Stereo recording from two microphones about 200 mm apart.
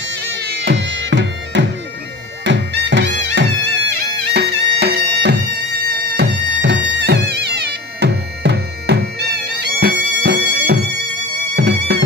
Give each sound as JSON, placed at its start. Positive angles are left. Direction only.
{"t": 0.3, "sound": "music", "side_deg": -60}
{"t": 2.4, "sound": "bagpipes", "side_deg": -65}
{"t": 3.2, "sound": "music", "side_deg": -65}